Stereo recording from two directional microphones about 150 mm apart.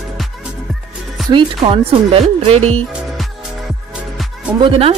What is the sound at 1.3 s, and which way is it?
Speech, 35° right (ahead or behind).